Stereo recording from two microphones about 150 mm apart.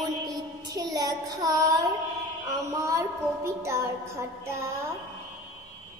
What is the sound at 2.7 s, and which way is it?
Child singing, 20° right (ahead or behind).